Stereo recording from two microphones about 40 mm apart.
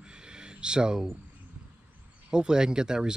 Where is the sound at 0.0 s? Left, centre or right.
Right.